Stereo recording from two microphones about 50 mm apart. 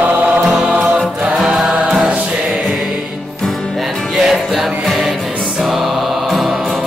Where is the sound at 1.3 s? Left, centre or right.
Centre.